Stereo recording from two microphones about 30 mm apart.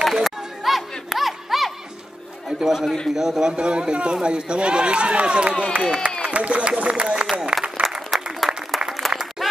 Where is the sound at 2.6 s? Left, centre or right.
Centre.